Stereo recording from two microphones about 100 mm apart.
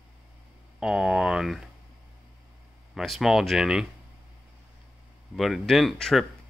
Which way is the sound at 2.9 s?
Centre (ahead or behind).